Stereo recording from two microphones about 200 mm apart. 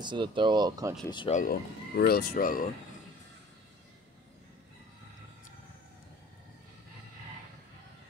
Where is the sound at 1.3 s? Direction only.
45° left (ahead or behind).